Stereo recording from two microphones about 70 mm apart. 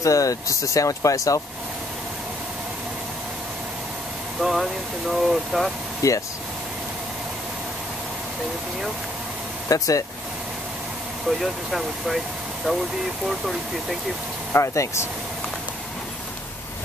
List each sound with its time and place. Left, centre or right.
0.0 s speech: left
4.4 s speech: centre
6.0 s speech: left
9.7 s speech: left
11.2 s speech: centre
14.5 s speech: left